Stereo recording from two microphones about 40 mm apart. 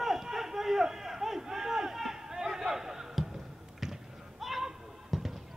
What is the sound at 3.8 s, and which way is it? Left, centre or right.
Basketball bounce, centre.